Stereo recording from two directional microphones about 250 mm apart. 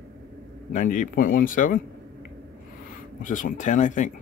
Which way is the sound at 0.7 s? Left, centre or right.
Left.